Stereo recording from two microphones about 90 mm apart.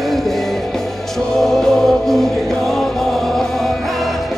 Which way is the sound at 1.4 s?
5° left (ahead or behind).